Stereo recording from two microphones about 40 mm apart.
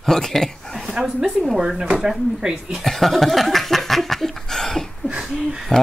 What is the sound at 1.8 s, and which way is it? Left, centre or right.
Speech, centre.